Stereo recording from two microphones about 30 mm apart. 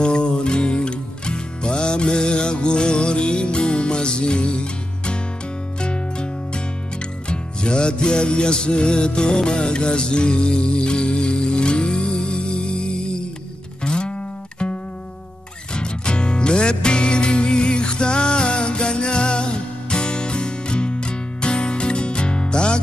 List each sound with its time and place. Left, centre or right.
0.0 s music: left
15.7 s music: left